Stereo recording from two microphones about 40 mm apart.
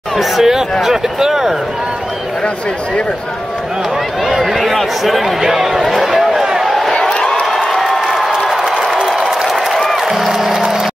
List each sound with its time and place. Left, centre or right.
0.2 s speech: centre
4.3 s speech: centre
6.3 s a sound: centre
6.6 s a sound: centre
7.0 s crowd: centre
7.5 s crowd: centre
9.4 s applause: centre
9.8 s music: centre
10.0 s music: centre